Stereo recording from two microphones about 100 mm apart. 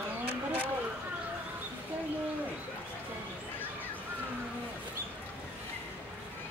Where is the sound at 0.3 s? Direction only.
65° right (ahead or behind).